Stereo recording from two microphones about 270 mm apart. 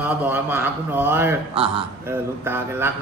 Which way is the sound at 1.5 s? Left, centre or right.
Centre.